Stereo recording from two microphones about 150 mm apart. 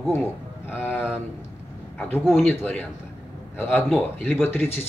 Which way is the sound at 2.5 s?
10° left (ahead or behind).